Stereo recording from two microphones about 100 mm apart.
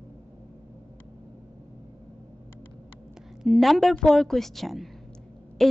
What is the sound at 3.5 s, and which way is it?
A woman's voice, centre (ahead or behind).